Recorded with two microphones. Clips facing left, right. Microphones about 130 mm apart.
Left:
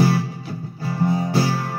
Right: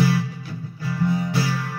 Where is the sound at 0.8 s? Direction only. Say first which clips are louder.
Left 2 dB; 40° left (ahead or behind).